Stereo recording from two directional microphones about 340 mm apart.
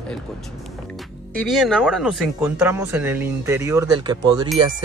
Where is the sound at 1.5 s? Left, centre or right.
Centre.